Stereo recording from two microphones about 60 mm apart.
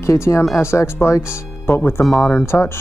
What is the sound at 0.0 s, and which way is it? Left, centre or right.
Speech, left.